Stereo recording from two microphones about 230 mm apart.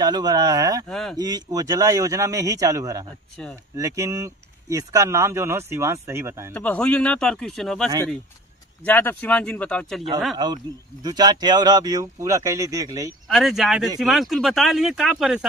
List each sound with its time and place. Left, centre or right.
0.0 s speech: centre
0.8 s speech: centre
1.1 s speech: centre
3.4 s speech: centre
3.7 s speech: centre
6.5 s speech: centre
10.3 s speech: centre
13.3 s speech: centre